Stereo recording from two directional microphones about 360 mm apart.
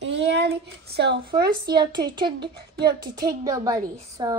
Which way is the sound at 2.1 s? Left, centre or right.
Centre.